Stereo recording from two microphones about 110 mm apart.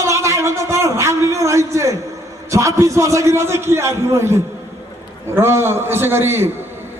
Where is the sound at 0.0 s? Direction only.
25° right (ahead or behind).